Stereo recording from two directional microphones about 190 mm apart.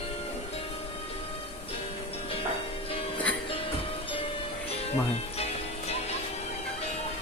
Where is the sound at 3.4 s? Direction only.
30° left (ahead or behind).